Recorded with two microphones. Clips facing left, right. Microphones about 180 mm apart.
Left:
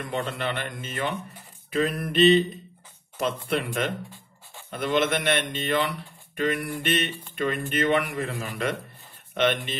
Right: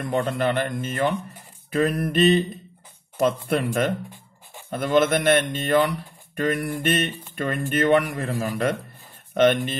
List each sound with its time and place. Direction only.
0.1 s speech: 45° right (ahead or behind)